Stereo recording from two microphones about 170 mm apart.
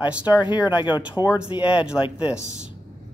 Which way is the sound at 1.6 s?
5° right (ahead or behind).